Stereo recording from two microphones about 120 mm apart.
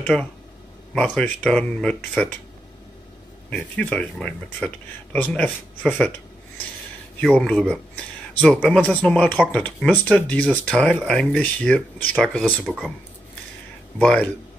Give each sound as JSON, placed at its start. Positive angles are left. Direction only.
{"t": 0.0, "sound": "speech", "side_deg": 10}
{"t": 3.4, "sound": "speech", "side_deg": 10}
{"t": 7.2, "sound": "speech", "side_deg": 5}
{"t": 12.6, "sound": "speech", "side_deg": -5}
{"t": 13.9, "sound": "speech", "side_deg": 10}